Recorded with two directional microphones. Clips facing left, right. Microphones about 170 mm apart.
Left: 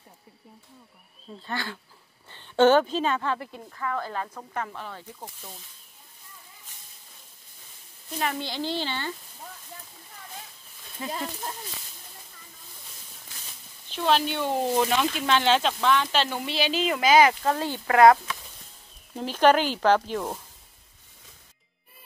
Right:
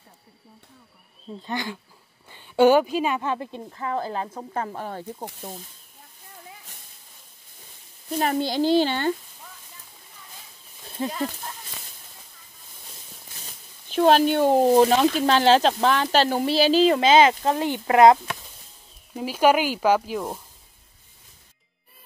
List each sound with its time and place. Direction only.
1.4 s a woman's voice: 15° right (ahead or behind)
4.6 s speech: 45° right (ahead or behind)
8.2 s speech: 40° right (ahead or behind)
11.0 s speech: 35° right (ahead or behind)
13.9 s speech: 45° right (ahead or behind); by 18.2 s 20° right (ahead or behind)
19.1 s speech: 10° right (ahead or behind)